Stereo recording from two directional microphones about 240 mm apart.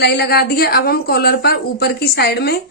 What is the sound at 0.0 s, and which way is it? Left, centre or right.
A woman's voice, left.